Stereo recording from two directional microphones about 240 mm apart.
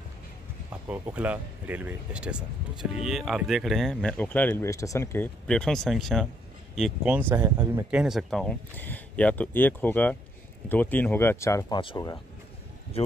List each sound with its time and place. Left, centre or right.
0.8 s speech: centre; by 13.1 s left